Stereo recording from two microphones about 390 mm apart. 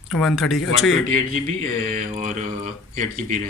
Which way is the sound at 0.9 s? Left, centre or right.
Left.